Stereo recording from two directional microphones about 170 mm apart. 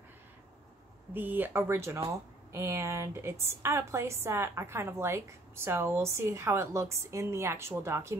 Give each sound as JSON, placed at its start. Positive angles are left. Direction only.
{"t": 1.1, "sound": "a woman's voice", "side_deg": -10}